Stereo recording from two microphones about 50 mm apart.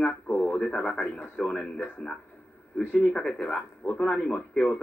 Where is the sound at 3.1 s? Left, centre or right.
Centre.